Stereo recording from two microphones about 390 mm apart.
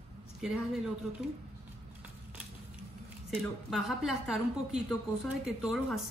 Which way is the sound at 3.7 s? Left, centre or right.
Centre.